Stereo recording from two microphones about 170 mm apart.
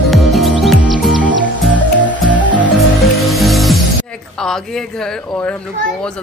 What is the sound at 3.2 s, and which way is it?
Music, centre (ahead or behind).